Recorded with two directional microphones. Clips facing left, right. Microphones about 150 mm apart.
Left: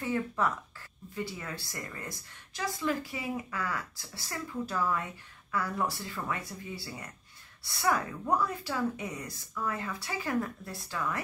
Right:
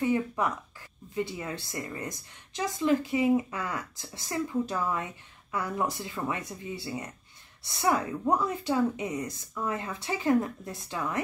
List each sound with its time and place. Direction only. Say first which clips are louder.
0.0 s a woman's voice: right 3 dB; 15° right (ahead or behind)